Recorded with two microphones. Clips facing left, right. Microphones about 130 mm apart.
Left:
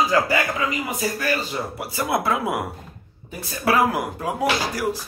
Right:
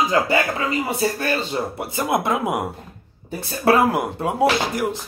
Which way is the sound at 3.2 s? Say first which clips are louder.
Right 4 dB; 30° right (ahead or behind).